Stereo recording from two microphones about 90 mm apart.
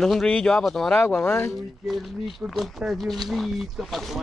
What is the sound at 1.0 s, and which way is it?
Speech, 25° left (ahead or behind).